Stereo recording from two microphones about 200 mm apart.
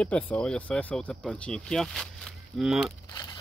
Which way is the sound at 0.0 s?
5° left (ahead or behind).